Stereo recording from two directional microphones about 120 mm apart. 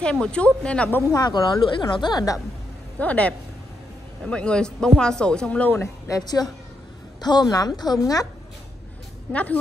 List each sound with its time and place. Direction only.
0.0 s speech: 10° left (ahead or behind)
1.1 s a woman's voice: 35° left (ahead or behind)
3.0 s a woman's voice: 10° left (ahead or behind); by 8.3 s 30° left (ahead or behind)
9.3 s speech: 10° left (ahead or behind)